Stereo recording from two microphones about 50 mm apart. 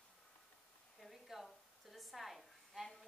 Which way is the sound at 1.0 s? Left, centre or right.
Centre.